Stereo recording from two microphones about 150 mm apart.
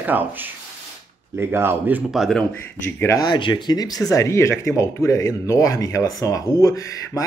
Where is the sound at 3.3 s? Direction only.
30° left (ahead or behind).